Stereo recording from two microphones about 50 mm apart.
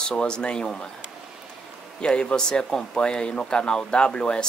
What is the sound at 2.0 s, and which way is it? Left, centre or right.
Speech, centre.